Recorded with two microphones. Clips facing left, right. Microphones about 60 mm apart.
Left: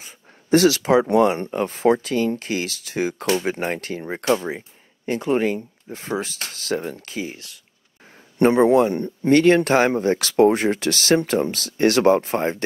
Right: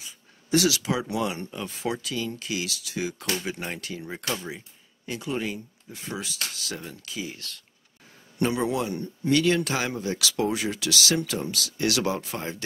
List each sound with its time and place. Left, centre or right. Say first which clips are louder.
0.0 s speech: left 3 dB; left
7.3 s speech: even; centre
8.4 s speech: left 11 dB; left